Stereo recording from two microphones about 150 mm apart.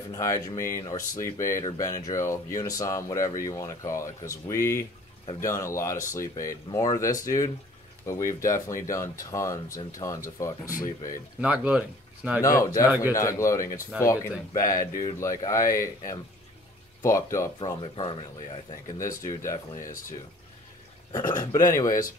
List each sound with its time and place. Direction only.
0.1 s speech: 20° left (ahead or behind)
10.4 s speech: 20° left (ahead or behind)
11.4 s speech: 10° right (ahead or behind)
12.4 s speech: 20° left (ahead or behind)
17.0 s speech: 20° left (ahead or behind)
17.6 s speech: 30° left (ahead or behind)
18.9 s speech: 20° left (ahead or behind)
21.1 s speech: 25° left (ahead or behind)